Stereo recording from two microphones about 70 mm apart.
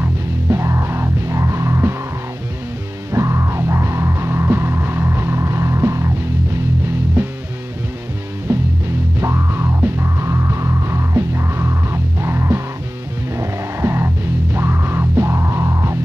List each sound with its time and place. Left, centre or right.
0.5 s music: right
3.1 s music: right
8.5 s music: right